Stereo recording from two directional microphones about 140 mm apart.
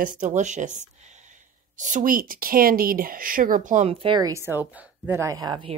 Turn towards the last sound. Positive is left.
turn(degrees=-30)  # may be behind; listen again after turning